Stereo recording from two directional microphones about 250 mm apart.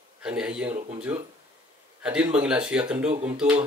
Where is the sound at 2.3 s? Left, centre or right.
Centre.